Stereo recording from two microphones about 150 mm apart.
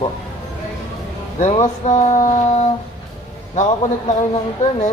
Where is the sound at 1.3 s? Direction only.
45° left (ahead or behind).